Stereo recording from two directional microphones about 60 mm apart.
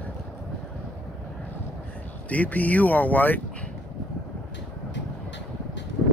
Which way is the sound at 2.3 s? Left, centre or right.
Left.